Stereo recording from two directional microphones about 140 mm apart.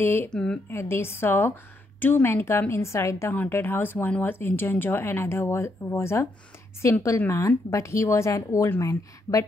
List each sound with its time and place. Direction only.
0.0 s a woman's voice: 15° left (ahead or behind)
0.3 s speech: 5° left (ahead or behind)
0.7 s a woman's voice: 15° left (ahead or behind)